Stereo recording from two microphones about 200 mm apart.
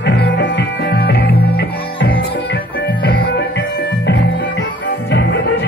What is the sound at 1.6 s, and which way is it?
Music, 70° left (ahead or behind).